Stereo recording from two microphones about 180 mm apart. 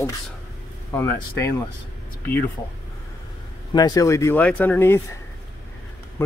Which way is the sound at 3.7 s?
20° left (ahead or behind).